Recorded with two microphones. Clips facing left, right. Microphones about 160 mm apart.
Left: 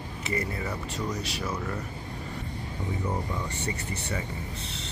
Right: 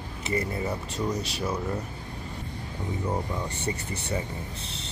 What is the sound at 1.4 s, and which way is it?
Speech, 20° right (ahead or behind).